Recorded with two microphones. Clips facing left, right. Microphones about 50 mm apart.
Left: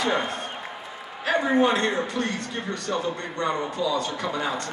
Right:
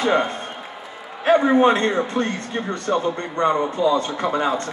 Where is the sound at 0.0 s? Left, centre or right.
Right.